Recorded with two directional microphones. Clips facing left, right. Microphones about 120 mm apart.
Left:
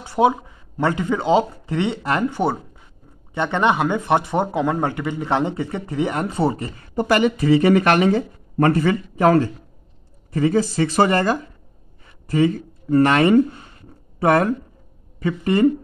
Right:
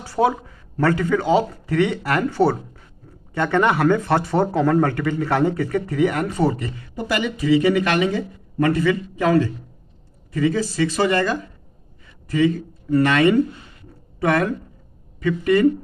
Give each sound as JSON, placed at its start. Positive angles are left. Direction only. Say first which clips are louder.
{"t": 0.0, "sound": "speech", "louder": "left 2 dB", "side_deg": 20}
{"t": 7.0, "sound": "speech", "louder": "left 6 dB", "side_deg": 50}
{"t": 12.3, "sound": "speech", "louder": "even", "side_deg": 40}